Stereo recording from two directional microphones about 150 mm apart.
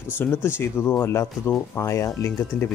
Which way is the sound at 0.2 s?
15° left (ahead or behind).